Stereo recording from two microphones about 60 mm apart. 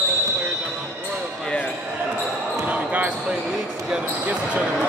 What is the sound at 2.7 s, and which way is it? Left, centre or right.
Basketball bounce, right.